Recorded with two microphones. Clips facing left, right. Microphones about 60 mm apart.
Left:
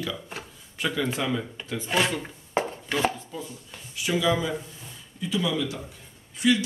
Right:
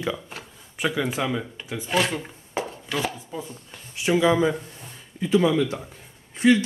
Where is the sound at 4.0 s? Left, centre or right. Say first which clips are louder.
Right 5 dB; right.